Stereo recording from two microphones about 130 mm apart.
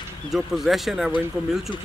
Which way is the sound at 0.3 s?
Centre (ahead or behind).